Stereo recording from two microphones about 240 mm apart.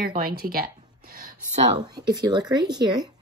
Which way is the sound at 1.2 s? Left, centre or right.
Right.